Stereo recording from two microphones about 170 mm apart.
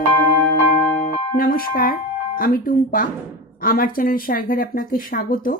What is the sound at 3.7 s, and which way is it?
Speech, 55° left (ahead or behind).